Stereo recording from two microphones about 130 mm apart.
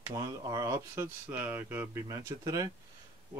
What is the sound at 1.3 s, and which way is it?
Speech, 15° right (ahead or behind).